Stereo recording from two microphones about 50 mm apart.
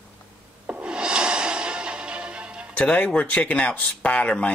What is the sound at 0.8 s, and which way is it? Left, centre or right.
Music, centre.